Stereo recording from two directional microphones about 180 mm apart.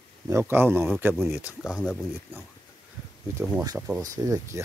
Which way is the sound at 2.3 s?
10° right (ahead or behind).